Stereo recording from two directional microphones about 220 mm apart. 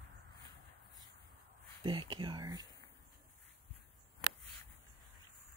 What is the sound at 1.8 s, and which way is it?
Speech, 20° right (ahead or behind).